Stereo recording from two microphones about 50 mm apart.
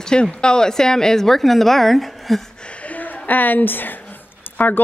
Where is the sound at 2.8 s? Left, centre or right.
Left.